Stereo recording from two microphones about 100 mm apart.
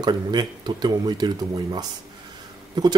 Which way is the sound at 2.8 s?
40° right (ahead or behind).